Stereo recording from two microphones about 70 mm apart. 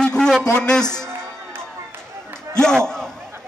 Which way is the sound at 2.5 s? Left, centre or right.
Centre.